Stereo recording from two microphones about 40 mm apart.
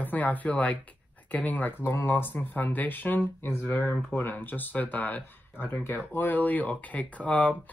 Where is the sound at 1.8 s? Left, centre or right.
Left.